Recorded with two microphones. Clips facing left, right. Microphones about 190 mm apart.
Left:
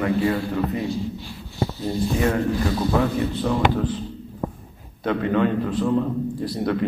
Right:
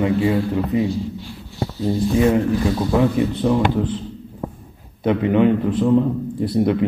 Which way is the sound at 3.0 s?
15° right (ahead or behind).